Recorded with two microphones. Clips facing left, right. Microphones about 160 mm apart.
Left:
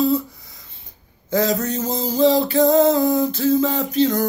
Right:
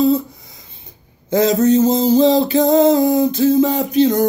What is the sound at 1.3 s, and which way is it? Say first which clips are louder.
Music: right 7 dB; 20° right (ahead or behind).